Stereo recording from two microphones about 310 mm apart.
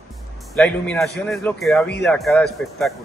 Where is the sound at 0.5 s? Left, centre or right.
Centre.